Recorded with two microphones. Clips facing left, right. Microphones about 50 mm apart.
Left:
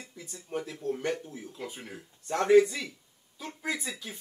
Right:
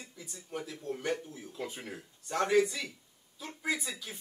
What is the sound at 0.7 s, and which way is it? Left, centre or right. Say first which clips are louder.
Speech: left 2 dB; left.